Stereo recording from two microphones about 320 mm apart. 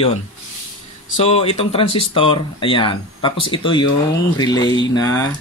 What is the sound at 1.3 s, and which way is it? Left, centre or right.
Speech, centre.